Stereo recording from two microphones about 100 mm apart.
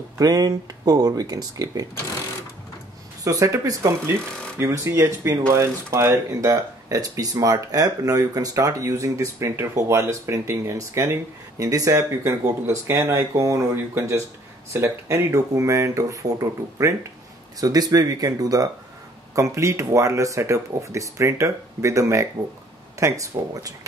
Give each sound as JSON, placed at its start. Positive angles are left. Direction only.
{"t": 0.2, "sound": "speech", "side_deg": -40}
{"t": 3.3, "sound": "speech", "side_deg": -35}